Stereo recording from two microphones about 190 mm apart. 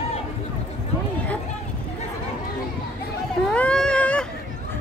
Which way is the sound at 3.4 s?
5° left (ahead or behind).